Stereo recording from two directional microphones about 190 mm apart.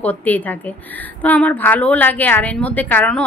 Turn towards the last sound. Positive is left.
turn(degrees=5)  # may be behind; listen again after turning